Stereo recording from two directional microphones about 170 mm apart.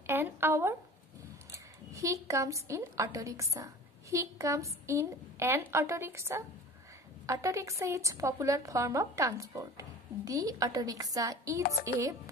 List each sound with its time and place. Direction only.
0.0 s a woman's voice: 15° right (ahead or behind)